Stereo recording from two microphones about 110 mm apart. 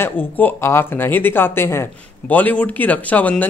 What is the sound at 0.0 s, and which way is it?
Speech, 20° left (ahead or behind).